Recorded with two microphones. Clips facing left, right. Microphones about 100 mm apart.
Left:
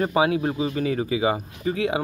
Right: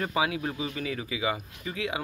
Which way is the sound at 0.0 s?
35° left (ahead or behind).